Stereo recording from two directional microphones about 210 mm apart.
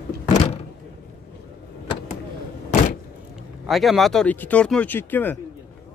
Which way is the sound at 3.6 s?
Centre (ahead or behind).